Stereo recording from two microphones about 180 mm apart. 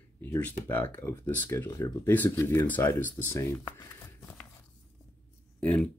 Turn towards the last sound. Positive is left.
turn(degrees=5)  # may be behind; listen again after turning